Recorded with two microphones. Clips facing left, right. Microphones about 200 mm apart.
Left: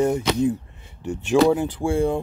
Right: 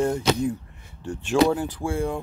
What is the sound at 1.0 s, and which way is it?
Speech, 20° left (ahead or behind).